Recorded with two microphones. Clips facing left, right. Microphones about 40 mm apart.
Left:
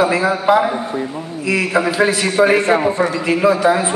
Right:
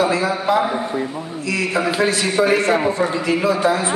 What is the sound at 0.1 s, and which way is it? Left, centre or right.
A man's voice, centre.